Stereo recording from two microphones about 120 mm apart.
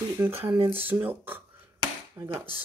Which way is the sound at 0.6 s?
15° right (ahead or behind).